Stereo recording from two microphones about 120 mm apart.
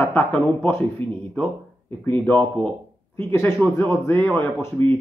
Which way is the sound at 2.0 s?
15° left (ahead or behind).